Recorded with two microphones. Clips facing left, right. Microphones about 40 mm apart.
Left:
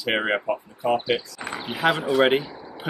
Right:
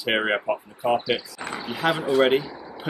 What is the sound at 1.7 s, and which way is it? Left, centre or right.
Speech, centre.